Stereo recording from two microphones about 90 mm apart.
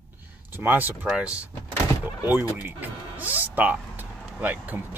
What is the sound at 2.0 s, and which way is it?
Speech, 20° right (ahead or behind).